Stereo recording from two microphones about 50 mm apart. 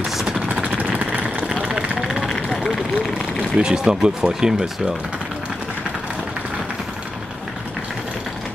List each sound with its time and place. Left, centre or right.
0.7 s vehicle: right
1.5 s vehicle: centre
2.2 s vehicle: centre
3.5 s speech: centre